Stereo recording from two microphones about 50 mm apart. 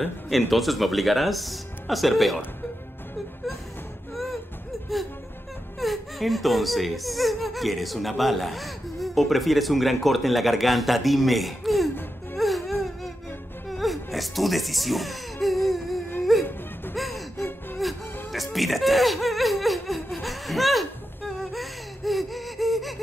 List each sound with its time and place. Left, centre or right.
0.0 s speech: centre
4.1 s a sound: centre
5.8 s speech: centre
12.4 s wail: centre
13.7 s music: centre
15.4 s a sound: centre
16.3 s whimper: centre
16.9 s music: centre
17.4 s gasp: left
18.3 s a sound: centre
21.4 s gasp: centre